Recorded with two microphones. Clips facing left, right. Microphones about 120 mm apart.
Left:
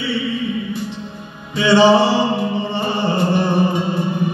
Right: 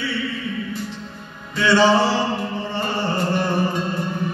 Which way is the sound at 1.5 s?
15° left (ahead or behind).